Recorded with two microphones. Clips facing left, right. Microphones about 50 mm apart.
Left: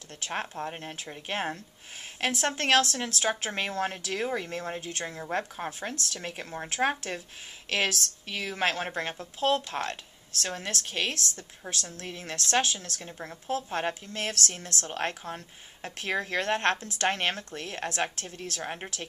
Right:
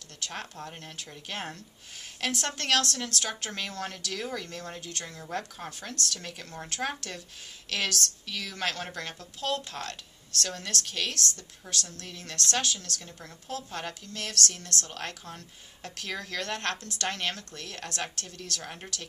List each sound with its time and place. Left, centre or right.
0.2 s a woman's voice: left